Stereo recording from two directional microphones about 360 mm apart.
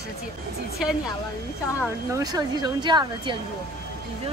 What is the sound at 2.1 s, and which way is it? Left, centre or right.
Speech, centre.